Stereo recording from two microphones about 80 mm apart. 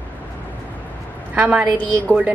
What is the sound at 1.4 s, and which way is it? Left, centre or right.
Speech, centre.